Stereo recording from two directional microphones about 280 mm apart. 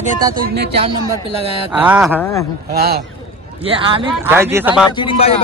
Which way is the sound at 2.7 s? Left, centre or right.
Right.